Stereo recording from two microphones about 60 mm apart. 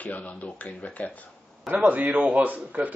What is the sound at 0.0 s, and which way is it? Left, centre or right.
Speech, left.